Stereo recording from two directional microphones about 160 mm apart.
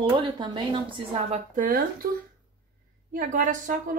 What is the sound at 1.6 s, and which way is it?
Speech, 65° right (ahead or behind).